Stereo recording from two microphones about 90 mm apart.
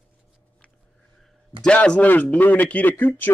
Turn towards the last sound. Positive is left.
turn(degrees=20)  # may be behind; listen again after turning